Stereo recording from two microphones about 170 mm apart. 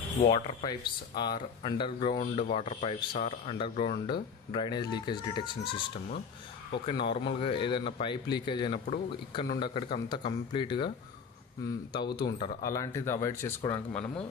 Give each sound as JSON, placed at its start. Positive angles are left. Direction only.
{"t": 0.2, "sound": "speech", "side_deg": 35}
{"t": 0.7, "sound": "speech", "side_deg": 25}
{"t": 11.9, "sound": "speech", "side_deg": 25}